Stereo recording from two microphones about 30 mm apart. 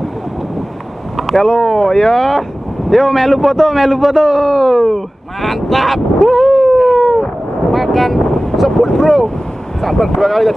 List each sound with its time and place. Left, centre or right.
1.1 s boat: centre
1.5 s speech: left
2.9 s speech: centre
7.7 s boat: centre
8.2 s vehicle: centre
8.5 s wind noise: centre
8.8 s vehicle: centre
9.8 s speech: centre